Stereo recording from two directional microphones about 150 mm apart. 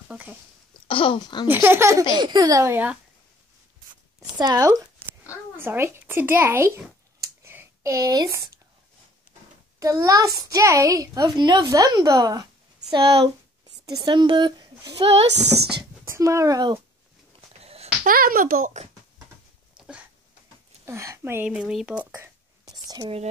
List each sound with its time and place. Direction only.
0.1 s speech: 10° right (ahead or behind)
0.8 s speech: 35° left (ahead or behind)
1.5 s speech: 15° right (ahead or behind)
2.1 s a child's voice: 30° right (ahead or behind); by 3.0 s 15° right (ahead or behind)
4.2 s speech: 25° right (ahead or behind)
9.8 s a child's voice: 20° right (ahead or behind)
15.0 s speech: 35° right (ahead or behind)
16.1 s a child's voice: 20° right (ahead or behind)
17.6 s a sound: 45° right (ahead or behind)
18.0 s speech: 70° right (ahead or behind); by 18.9 s 55° right (ahead or behind)
20.8 s speech: 20° right (ahead or behind)
21.5 s speech: 5° right (ahead or behind)
22.8 s speech: 25° right (ahead or behind)